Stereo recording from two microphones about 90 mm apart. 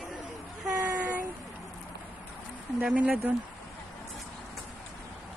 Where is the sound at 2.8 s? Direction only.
10° right (ahead or behind).